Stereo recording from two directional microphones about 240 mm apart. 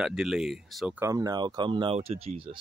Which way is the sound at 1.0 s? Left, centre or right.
Centre.